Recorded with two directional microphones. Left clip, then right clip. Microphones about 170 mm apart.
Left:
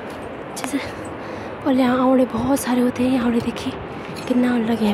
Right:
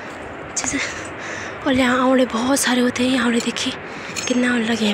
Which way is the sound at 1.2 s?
Centre (ahead or behind).